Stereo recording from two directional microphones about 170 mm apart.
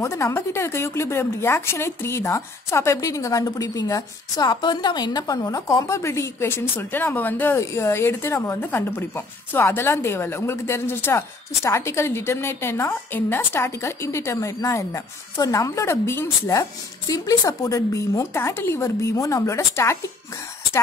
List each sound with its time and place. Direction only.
0.0 s speech: 15° left (ahead or behind)